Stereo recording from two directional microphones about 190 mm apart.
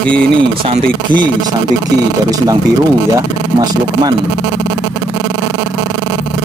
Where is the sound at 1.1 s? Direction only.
5° left (ahead or behind).